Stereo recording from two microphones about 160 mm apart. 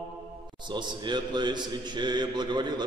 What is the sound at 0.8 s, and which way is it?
A man's voice, 30° right (ahead or behind).